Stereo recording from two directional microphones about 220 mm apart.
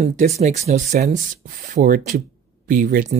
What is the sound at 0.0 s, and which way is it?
Speech, 30° right (ahead or behind).